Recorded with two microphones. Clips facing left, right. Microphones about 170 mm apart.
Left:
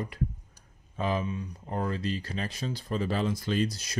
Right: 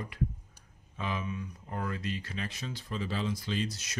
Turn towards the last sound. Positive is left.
turn(degrees=35)  # may be behind; listen again after turning